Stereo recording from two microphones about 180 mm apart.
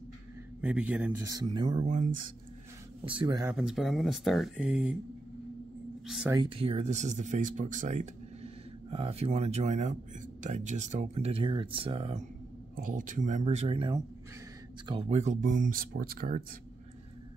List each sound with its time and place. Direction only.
0.6 s a man's voice: 5° right (ahead or behind)
1.2 s speech: 20° right (ahead or behind)
1.9 s speech: 40° right (ahead or behind)
3.1 s speech: 25° right (ahead or behind)
3.5 s speech: centre (ahead or behind)
6.0 s speech: centre (ahead or behind)
6.3 s speech: 25° right (ahead or behind); by 8.1 s 45° right (ahead or behind)
8.9 s speech: 35° right (ahead or behind)
12.7 s speech: 50° right (ahead or behind)